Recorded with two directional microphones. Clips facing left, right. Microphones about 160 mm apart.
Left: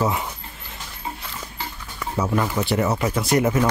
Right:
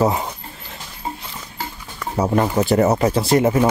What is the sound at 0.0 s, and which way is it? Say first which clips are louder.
Speech: right 5 dB; 35° right (ahead or behind).